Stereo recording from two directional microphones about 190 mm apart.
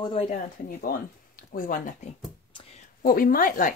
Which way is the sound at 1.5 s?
45° left (ahead or behind).